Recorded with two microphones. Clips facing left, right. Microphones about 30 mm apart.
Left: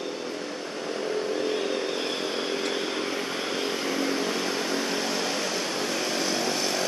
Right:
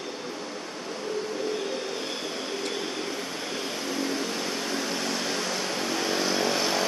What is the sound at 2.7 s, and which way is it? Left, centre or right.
Chainsaw, left.